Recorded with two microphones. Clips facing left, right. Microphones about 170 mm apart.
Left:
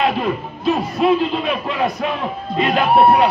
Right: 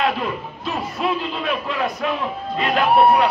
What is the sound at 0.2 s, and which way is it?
Speech, 35° left (ahead or behind).